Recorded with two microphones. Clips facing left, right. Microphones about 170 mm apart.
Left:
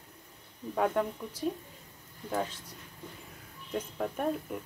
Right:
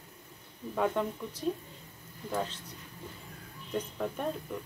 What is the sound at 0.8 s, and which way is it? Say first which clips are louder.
Speech: left 1 dB; 5° left (ahead or behind).